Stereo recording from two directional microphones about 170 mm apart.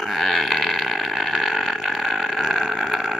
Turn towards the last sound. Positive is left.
turn(degrees=0)  # may be behind; listen again after turning